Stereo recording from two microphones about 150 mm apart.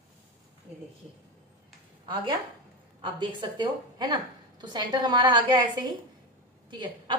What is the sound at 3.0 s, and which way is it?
A woman's voice, 30° right (ahead or behind).